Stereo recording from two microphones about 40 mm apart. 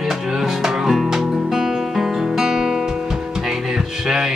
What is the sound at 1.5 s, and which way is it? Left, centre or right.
Guitar, centre.